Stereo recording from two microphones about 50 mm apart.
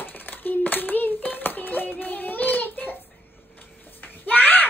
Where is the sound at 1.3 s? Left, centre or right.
Left.